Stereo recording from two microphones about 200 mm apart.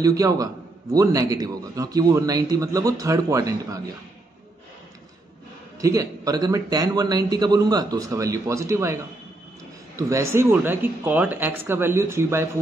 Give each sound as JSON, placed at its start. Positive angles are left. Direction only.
{"t": 0.0, "sound": "a man's voice", "side_deg": -15}
{"t": 5.8, "sound": "speech", "side_deg": -15}
{"t": 9.9, "sound": "a man's voice", "side_deg": -15}